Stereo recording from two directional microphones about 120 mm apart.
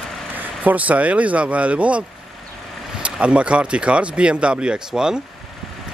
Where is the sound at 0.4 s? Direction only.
15° right (ahead or behind).